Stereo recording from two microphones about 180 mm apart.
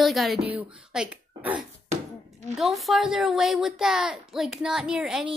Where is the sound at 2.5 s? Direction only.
Centre (ahead or behind).